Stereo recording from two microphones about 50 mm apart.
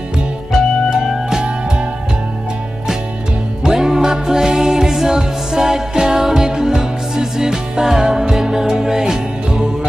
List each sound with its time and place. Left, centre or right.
0.8 s music: centre
3.6 s music: centre